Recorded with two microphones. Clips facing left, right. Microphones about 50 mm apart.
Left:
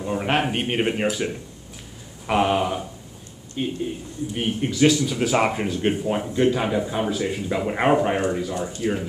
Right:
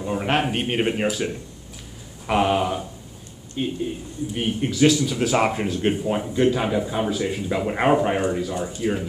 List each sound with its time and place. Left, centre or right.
0.0 s speech: centre